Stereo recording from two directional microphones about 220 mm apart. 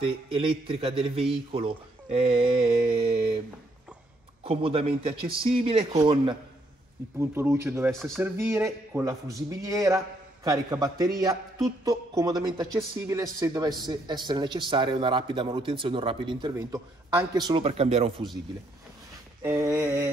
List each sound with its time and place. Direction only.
0.0 s speech: 25° right (ahead or behind)
2.6 s a sound: 45° right (ahead or behind)
4.5 s a man's voice: 25° right (ahead or behind)
7.9 s speech: centre (ahead or behind)
8.2 s a man's voice: 10° right (ahead or behind)
19.4 s a man's voice: 10° right (ahead or behind)